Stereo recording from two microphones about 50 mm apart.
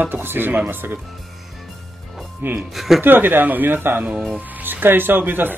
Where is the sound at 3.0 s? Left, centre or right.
Right.